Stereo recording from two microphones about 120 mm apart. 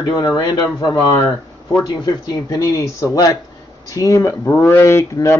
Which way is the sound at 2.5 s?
30° left (ahead or behind).